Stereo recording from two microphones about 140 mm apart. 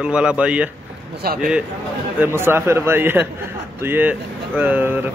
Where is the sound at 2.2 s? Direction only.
15° right (ahead or behind).